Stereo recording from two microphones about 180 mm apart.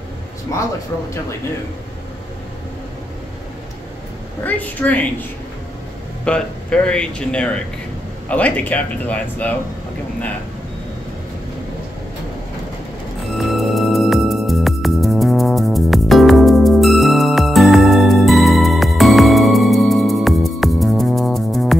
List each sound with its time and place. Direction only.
0.5 s speech: 15° left (ahead or behind)
4.4 s speech: 10° left (ahead or behind)
6.2 s speech: 5° left (ahead or behind)
13.3 s music: centre (ahead or behind)